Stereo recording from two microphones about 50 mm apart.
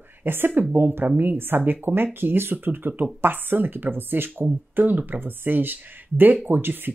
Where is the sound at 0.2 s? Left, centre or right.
Right.